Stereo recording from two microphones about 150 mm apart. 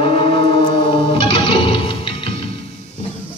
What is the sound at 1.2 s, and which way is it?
Music, 35° left (ahead or behind).